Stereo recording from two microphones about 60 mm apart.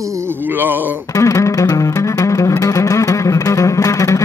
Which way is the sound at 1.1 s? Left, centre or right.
Left.